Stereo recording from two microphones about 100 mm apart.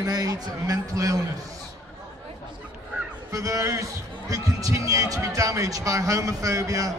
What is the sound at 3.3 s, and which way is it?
Speech, 35° right (ahead or behind).